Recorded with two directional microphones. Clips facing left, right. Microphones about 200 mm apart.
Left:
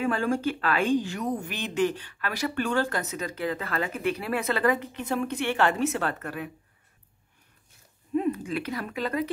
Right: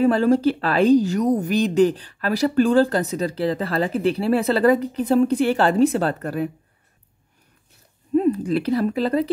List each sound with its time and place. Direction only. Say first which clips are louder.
0.0 s a woman's voice: right 9 dB; 35° right (ahead or behind)
8.1 s a woman's voice: right 8 dB; 35° right (ahead or behind)